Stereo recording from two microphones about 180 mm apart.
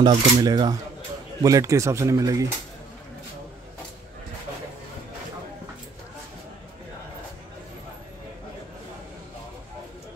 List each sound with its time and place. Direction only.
0.0 s cutlery: 25° right (ahead or behind)
1.4 s speech: 20° right (ahead or behind)